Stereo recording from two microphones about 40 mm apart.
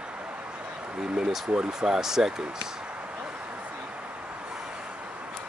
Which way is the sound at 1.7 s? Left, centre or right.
Centre.